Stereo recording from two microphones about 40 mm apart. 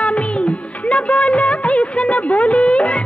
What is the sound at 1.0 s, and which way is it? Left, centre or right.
Music of bollywood, left.